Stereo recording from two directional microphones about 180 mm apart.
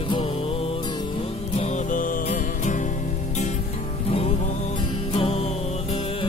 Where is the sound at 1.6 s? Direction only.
45° left (ahead or behind).